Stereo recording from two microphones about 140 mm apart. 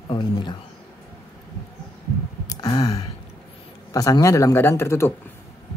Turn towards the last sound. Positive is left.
turn(degrees=20)  # may be behind; listen again after turning